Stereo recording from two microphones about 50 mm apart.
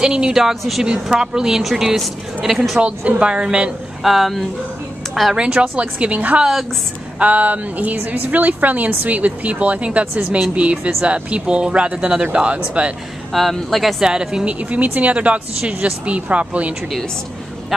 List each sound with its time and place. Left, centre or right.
0.0 s a woman's voice: centre
0.4 s a woman's voice: centre
3.1 s speech: right
4.0 s speech: centre
5.3 s a woman's voice: centre
13.3 s speech: centre
14.0 s a woman's voice: centre
14.4 s speech: right